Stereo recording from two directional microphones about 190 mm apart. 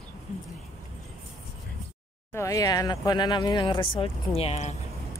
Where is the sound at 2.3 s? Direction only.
15° left (ahead or behind); by 4.7 s 35° left (ahead or behind).